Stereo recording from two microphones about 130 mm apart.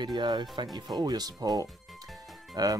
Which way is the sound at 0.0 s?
35° right (ahead or behind).